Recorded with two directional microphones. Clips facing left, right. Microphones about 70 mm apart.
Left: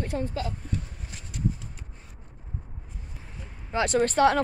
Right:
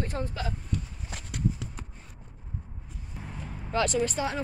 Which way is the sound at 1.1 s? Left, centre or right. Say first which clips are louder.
Even; right.